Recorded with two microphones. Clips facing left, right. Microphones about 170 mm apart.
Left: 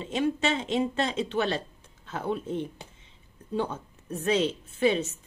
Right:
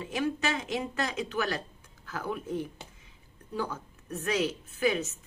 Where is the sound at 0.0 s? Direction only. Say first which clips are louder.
Left 3 dB; 25° left (ahead or behind).